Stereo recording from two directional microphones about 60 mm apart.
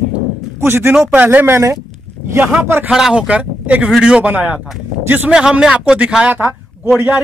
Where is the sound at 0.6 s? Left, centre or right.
Right.